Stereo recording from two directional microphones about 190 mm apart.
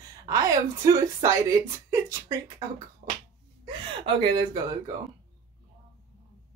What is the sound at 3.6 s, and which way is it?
Speech, 25° right (ahead or behind).